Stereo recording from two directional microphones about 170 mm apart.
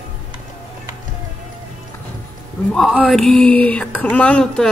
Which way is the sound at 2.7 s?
Centre (ahead or behind).